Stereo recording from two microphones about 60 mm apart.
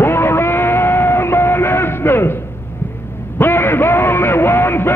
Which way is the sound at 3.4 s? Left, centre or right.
Left.